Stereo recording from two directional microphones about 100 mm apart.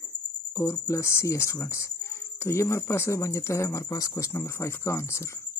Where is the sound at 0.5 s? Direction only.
30° left (ahead or behind).